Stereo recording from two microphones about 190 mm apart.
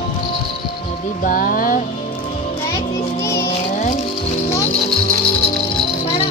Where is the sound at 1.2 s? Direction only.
45° left (ahead or behind).